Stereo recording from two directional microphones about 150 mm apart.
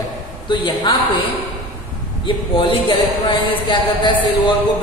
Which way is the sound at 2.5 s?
35° left (ahead or behind).